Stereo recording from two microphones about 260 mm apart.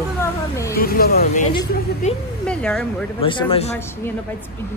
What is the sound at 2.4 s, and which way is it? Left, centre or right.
Speech, centre.